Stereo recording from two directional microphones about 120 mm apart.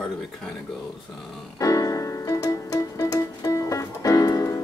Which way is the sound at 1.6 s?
30° left (ahead or behind).